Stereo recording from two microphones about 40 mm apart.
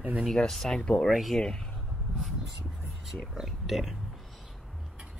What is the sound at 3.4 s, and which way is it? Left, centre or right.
Speech, centre.